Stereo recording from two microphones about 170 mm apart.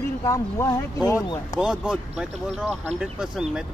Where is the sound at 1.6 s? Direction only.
5° right (ahead or behind).